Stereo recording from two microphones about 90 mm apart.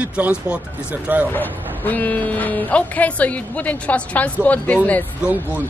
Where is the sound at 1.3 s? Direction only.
20° left (ahead or behind).